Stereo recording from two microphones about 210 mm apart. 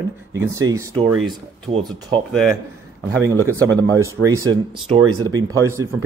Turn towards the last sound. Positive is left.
turn(degrees=-15)  # may be behind; listen again after turning